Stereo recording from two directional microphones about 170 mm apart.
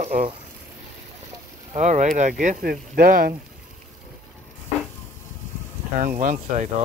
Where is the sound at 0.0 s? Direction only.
45° right (ahead or behind).